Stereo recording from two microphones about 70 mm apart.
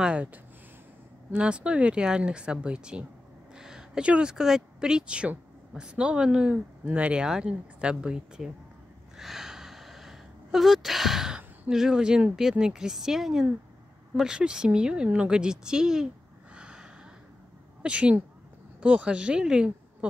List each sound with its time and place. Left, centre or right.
0.0 s speech: centre
9.1 s gasp: centre
11.7 s speech: centre
16.5 s a sound: centre
17.8 s speech: centre